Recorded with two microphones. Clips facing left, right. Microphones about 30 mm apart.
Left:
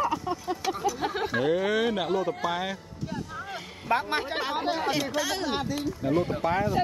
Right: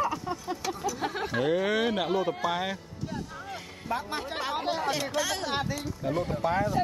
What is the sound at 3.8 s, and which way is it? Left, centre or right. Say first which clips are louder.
Speech: left 6 dB; left.